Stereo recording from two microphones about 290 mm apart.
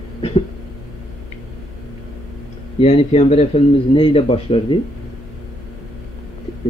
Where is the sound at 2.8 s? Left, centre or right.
Left.